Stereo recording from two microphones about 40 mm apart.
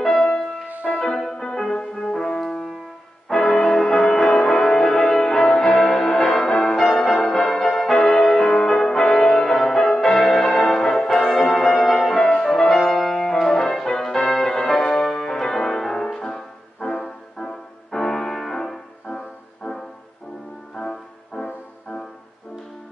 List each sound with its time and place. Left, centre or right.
0.0 s music: centre
19.0 s music: centre
21.5 s music: left